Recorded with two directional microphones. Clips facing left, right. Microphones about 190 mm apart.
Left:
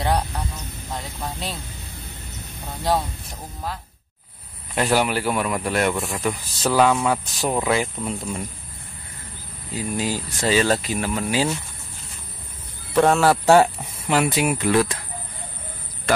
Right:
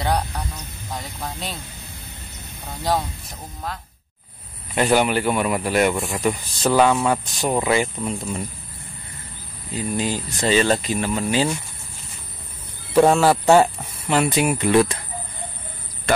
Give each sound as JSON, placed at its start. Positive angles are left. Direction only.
{"t": 0.9, "sound": "speech", "side_deg": 0}
{"t": 2.8, "sound": "speech", "side_deg": 0}
{"t": 9.8, "sound": "speech", "side_deg": 5}
{"t": 12.9, "sound": "speech", "side_deg": -5}
{"t": 14.0, "sound": "speech", "side_deg": 10}